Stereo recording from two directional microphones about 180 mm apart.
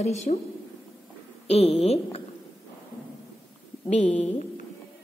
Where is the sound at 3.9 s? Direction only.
40° left (ahead or behind).